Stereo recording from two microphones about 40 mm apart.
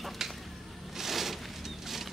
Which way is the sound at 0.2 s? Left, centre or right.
Centre.